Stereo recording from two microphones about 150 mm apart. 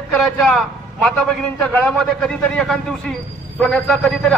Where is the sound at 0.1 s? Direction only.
Centre (ahead or behind).